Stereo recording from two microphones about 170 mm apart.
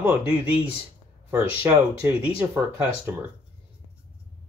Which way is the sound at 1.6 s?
10° right (ahead or behind).